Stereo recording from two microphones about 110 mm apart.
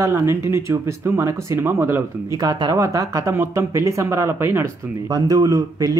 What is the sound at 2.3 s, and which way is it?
Speech, 35° right (ahead or behind).